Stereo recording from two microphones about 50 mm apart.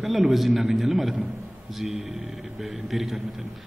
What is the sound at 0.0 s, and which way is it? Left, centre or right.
A man's voice, centre.